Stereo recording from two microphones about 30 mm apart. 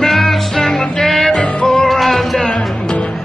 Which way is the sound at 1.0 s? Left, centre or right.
Centre.